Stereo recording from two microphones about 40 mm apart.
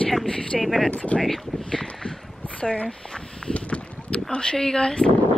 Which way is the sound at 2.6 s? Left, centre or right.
Left.